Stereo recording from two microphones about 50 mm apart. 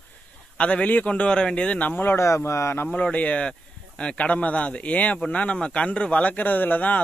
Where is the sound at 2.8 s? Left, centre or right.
Left.